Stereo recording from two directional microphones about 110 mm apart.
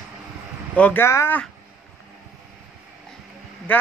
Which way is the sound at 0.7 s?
15° left (ahead or behind).